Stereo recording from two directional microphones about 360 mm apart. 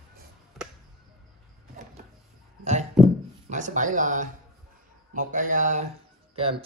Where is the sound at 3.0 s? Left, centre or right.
Centre.